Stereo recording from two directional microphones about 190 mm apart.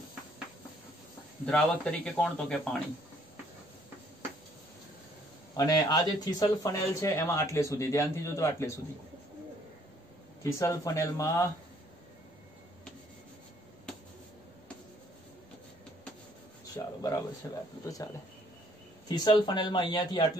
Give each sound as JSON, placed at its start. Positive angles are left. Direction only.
{"t": 1.4, "sound": "speech", "side_deg": 5}
{"t": 5.6, "sound": "speech", "side_deg": 20}
{"t": 10.4, "sound": "speech", "side_deg": 15}
{"t": 16.7, "sound": "a sound", "side_deg": 20}
{"t": 17.4, "sound": "speech", "side_deg": 10}
{"t": 19.0, "sound": "speech", "side_deg": 20}